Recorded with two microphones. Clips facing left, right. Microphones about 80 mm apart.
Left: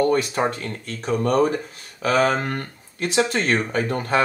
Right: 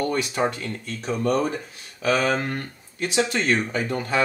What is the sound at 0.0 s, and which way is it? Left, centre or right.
Speech, left.